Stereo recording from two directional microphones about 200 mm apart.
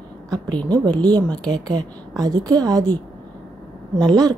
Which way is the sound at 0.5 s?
20° right (ahead or behind).